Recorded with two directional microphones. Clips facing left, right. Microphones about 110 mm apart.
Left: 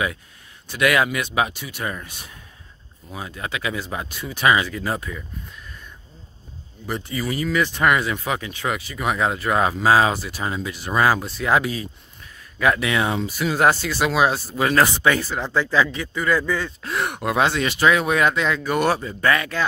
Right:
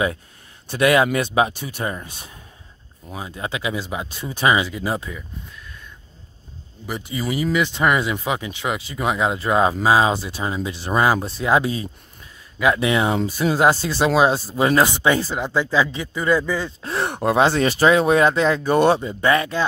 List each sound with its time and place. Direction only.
0.7 s speech: 30° right (ahead or behind)
4.1 s speech: 30° right (ahead or behind)
6.9 s speech: 15° right (ahead or behind)
16.8 s speech: 30° right (ahead or behind)